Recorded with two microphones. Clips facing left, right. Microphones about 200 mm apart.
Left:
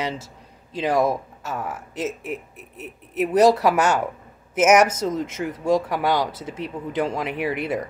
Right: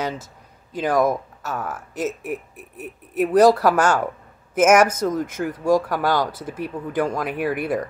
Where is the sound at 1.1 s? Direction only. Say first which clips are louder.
Right 1 dB; centre (ahead or behind).